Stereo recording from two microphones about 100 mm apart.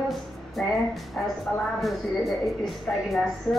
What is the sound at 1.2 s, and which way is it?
Speech, 15° left (ahead or behind).